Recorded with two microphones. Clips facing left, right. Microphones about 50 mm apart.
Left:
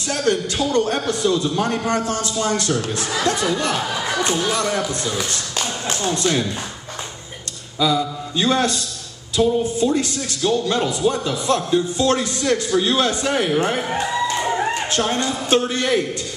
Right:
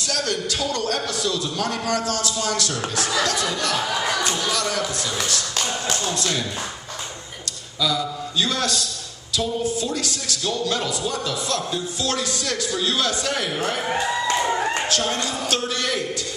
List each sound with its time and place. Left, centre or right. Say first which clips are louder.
0.1 s speech: left 6 dB; left
4.4 s speech: left 3 dB; left
7.8 s speech: left 4 dB; left
13.8 s speech: even; centre
14.9 s speech: left 3 dB; left